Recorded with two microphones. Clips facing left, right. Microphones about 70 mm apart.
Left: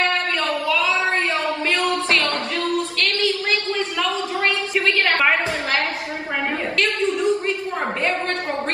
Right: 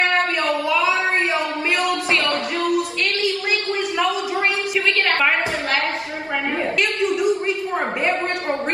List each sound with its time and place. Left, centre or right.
0.4 s a sound: right
2.0 s music: right
7.2 s a woman's voice: centre